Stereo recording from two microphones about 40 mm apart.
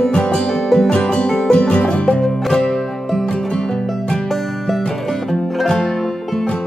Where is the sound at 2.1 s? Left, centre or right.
Centre.